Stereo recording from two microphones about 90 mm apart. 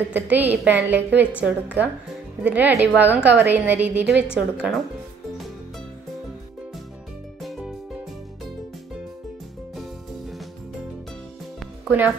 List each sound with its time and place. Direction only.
0.1 s a woman's voice: 20° right (ahead or behind)
7.4 s music: 5° right (ahead or behind)